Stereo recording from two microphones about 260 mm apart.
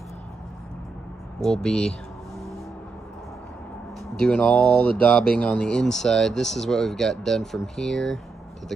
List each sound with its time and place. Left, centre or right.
1.4 s speech: centre
4.2 s speech: centre